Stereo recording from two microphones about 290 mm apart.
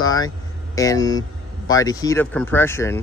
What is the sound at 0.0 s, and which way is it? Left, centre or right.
Vehicle, centre.